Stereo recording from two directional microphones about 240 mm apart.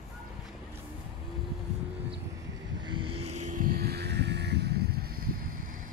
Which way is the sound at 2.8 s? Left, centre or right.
Centre.